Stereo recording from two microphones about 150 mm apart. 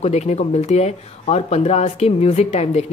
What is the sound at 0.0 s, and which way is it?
Speech, 45° left (ahead or behind).